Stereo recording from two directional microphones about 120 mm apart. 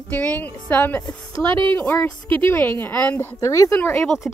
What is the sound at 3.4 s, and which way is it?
Speech, 25° left (ahead or behind).